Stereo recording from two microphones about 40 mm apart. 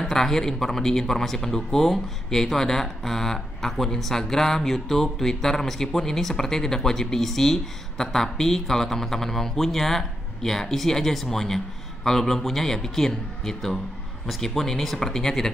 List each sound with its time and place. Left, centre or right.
0.0 s speech: centre